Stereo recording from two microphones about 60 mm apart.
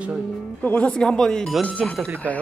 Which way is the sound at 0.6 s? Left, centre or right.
Left.